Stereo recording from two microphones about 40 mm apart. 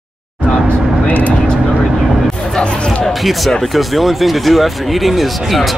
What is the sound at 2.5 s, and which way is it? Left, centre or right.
Speech, left.